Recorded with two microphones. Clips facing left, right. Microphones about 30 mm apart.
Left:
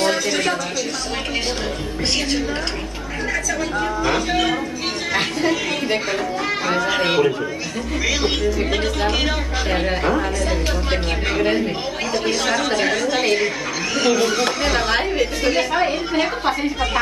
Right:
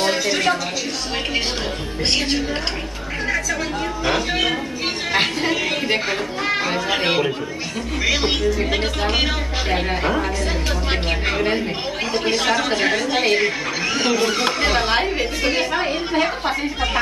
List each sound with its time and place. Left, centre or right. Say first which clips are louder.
0.0 s a sound: even; centre
4.0 s speech: even; centre
15.7 s speech: left 1 dB; centre